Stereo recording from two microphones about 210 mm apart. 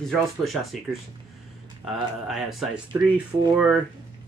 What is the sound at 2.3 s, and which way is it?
Speech, centre (ahead or behind).